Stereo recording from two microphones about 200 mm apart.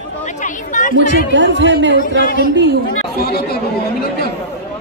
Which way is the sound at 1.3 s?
65° right (ahead or behind).